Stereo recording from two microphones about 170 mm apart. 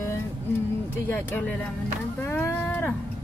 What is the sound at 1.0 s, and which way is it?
Speech, 15° left (ahead or behind).